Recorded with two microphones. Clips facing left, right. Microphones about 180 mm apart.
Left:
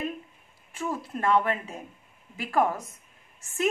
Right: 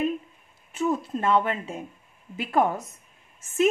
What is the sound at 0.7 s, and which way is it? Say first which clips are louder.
A woman's voice: right 6 dB; 25° right (ahead or behind).